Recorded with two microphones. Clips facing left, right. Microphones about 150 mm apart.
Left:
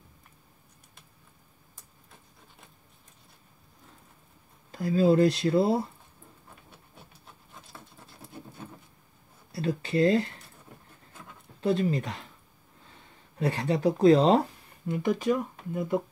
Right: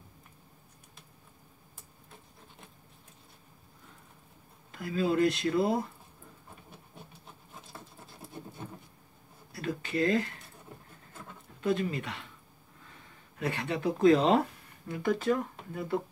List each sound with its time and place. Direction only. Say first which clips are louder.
4.6 s speech: left 7 dB; 35° left (ahead or behind)
9.5 s speech: left 5 dB; 30° left (ahead or behind)
11.6 s speech: left 4 dB; 35° left (ahead or behind)
13.4 s speech: left 6 dB; 35° left (ahead or behind)
14.9 s speech: left 2 dB; 20° left (ahead or behind)